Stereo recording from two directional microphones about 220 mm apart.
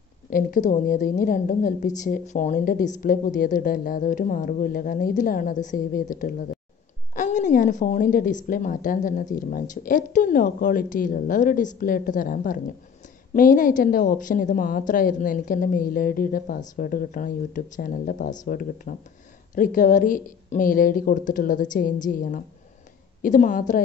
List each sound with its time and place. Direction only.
0.3 s a woman's voice: 40° left (ahead or behind)